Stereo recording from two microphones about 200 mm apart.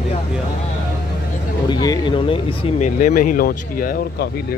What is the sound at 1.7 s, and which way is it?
Speech, 20° left (ahead or behind).